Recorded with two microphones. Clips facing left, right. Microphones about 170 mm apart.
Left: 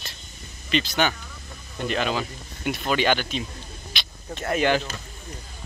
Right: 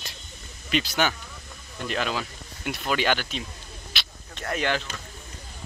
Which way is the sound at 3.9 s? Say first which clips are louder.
Even; 5° right (ahead or behind).